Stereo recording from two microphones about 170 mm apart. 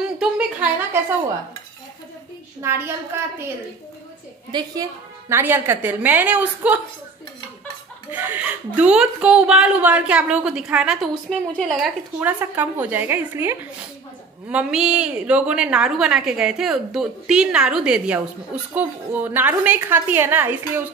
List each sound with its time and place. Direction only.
0.2 s a sound: 5° right (ahead or behind)
3.1 s a woman's voice: 15° right (ahead or behind)
4.5 s a woman's voice: 25° right (ahead or behind)
5.3 s a woman's voice: 15° right (ahead or behind)
8.1 s speech: 10° right (ahead or behind)
12.2 s a woman's voice: 10° right (ahead or behind)